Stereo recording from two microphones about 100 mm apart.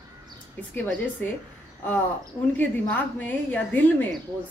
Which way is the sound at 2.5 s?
20° left (ahead or behind).